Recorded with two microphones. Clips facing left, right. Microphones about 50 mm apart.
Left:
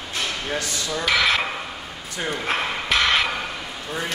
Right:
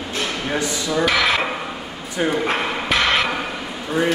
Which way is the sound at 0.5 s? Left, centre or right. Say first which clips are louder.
Right 5 dB; centre.